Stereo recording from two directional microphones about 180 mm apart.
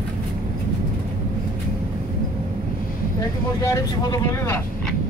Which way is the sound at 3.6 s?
15° left (ahead or behind).